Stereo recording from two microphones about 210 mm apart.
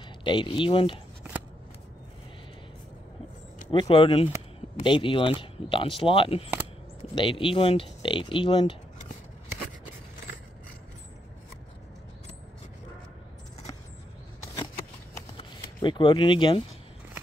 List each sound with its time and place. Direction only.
0.2 s speech: 20° left (ahead or behind)
3.7 s speech: 25° left (ahead or behind)
15.3 s a sound: 25° left (ahead or behind)